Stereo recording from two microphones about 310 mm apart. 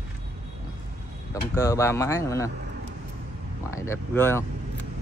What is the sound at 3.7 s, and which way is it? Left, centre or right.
Speech, centre.